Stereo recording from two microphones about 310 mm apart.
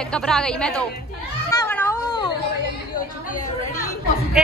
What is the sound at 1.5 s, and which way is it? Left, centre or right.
Cat, centre.